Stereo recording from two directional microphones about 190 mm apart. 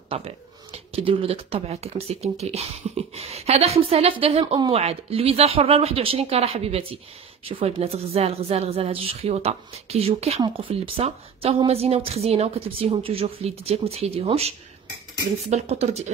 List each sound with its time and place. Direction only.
0.1 s a woman's voice: 30° right (ahead or behind)